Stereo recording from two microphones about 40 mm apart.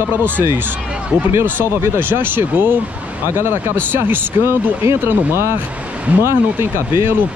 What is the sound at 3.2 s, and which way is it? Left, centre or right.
Speech, right.